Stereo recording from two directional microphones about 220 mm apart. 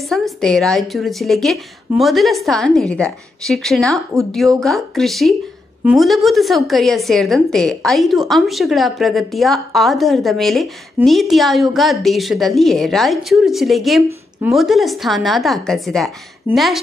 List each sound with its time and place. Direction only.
0.0 s a woman's voice: centre (ahead or behind)